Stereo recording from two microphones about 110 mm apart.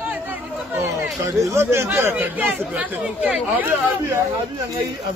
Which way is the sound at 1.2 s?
25° right (ahead or behind).